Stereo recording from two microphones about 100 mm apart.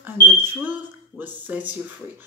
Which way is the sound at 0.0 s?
20° right (ahead or behind).